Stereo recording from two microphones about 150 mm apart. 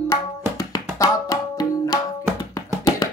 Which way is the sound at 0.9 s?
20° left (ahead or behind).